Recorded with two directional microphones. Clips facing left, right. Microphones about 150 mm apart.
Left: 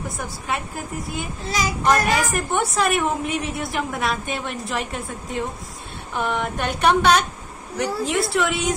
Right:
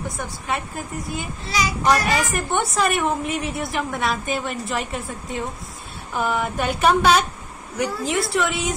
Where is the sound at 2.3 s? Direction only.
Centre (ahead or behind).